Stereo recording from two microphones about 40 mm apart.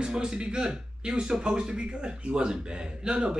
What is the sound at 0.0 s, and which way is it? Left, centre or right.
Speech, centre.